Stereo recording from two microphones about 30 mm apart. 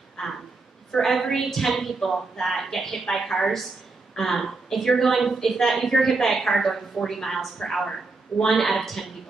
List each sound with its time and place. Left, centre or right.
0.2 s a woman's voice: centre